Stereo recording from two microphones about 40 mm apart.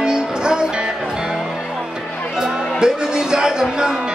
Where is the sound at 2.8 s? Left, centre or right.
Centre.